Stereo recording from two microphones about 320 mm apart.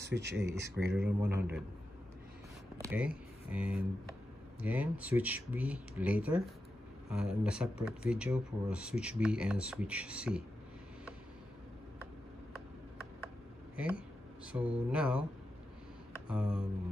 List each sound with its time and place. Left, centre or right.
0.0 s speech: right
1.0 s speech: centre
2.8 s speech: centre
14.5 s speech: centre
16.3 s speech: centre